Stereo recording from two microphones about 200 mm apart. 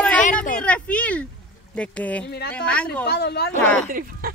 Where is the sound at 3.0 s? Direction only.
55° left (ahead or behind).